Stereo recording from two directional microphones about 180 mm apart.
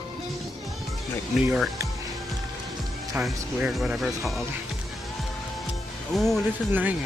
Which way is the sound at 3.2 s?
10° right (ahead or behind).